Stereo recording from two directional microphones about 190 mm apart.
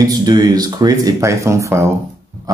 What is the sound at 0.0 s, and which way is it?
Speech, 20° right (ahead or behind).